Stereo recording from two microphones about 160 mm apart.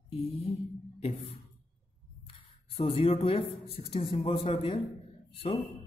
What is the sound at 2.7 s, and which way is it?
Speech, 40° left (ahead or behind).